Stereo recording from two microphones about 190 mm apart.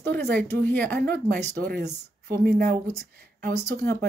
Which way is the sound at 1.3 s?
45° right (ahead or behind).